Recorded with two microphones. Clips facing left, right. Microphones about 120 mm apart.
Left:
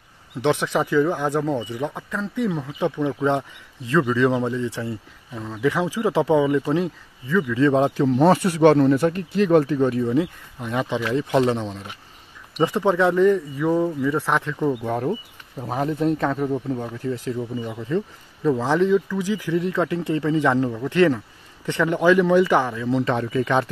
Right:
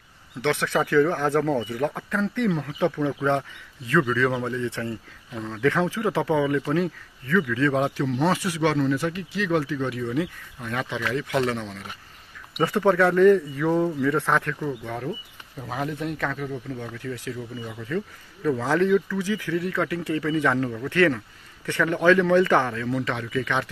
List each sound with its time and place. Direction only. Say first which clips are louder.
0.4 s speech: left 3 dB; 15° left (ahead or behind)
7.7 s speech: left 5 dB; 30° left (ahead or behind); by 14.6 s 10° left (ahead or behind)
14.9 s speech: left 7 dB; 40° left (ahead or behind); by 22.9 s 15° left (ahead or behind)
22.9 s speech: left 9 dB; 35° left (ahead or behind)